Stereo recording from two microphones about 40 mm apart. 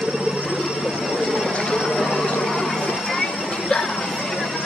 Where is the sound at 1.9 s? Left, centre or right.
Centre.